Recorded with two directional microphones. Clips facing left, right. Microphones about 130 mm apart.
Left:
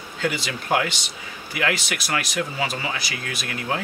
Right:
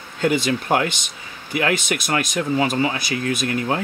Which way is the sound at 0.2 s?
45° right (ahead or behind).